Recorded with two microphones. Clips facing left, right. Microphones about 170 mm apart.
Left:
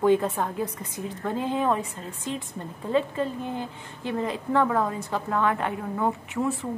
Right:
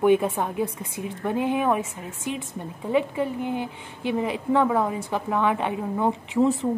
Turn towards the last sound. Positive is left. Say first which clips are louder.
# right 4 dB
turn(degrees=-15)  # may be behind; listen again after turning